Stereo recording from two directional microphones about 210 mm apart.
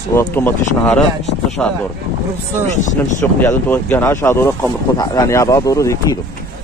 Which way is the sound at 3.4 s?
10° left (ahead or behind).